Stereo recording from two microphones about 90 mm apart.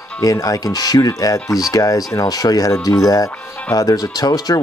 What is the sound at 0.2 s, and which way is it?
Speech, 40° left (ahead or behind).